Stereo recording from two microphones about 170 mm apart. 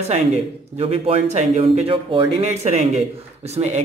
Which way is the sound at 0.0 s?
40° right (ahead or behind).